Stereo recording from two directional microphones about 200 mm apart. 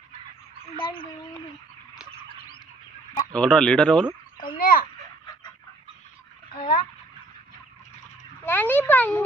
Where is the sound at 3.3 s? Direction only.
5° left (ahead or behind).